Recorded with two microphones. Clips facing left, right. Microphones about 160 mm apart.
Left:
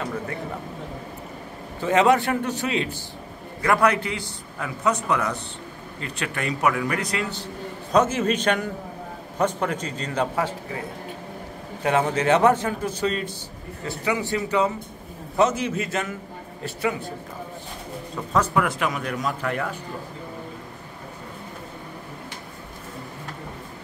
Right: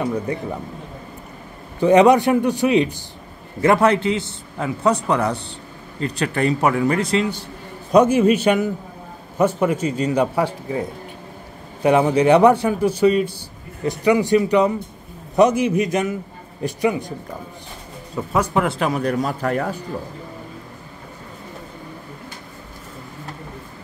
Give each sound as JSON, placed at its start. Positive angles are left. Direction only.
{"t": 1.8, "sound": "a man's voice", "side_deg": -20}
{"t": 7.9, "sound": "a man's voice", "side_deg": -10}
{"t": 11.8, "sound": "a man's voice", "side_deg": -15}
{"t": 18.2, "sound": "a man's voice", "side_deg": -10}
{"t": 18.5, "sound": "speech", "side_deg": -30}